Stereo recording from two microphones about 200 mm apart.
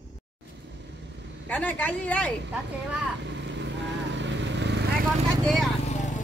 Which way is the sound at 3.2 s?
65° right (ahead or behind).